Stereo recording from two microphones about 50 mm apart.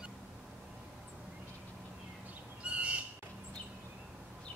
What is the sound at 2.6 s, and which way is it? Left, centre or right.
Owl, right.